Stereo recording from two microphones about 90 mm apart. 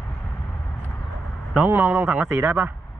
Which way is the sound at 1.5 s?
25° right (ahead or behind).